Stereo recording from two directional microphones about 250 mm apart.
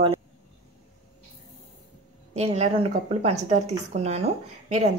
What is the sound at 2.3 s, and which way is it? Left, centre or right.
Speech, right.